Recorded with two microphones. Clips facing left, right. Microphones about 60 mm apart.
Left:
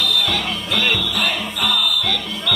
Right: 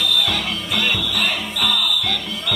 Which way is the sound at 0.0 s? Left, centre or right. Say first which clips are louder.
Left 1 dB; centre.